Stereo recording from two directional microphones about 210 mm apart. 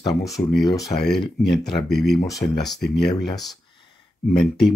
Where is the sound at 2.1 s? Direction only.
15° left (ahead or behind).